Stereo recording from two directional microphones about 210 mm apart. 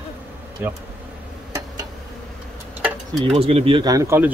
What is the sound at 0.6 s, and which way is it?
Speech, 10° right (ahead or behind).